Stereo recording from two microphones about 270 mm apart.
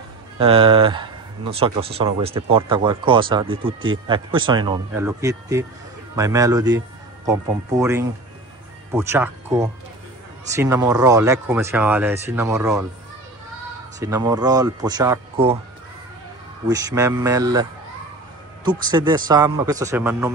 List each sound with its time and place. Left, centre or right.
0.4 s speech: centre
13.9 s speech: centre
16.6 s speech: centre